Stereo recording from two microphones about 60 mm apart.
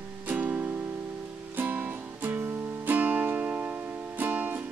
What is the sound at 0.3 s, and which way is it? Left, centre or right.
Music, right.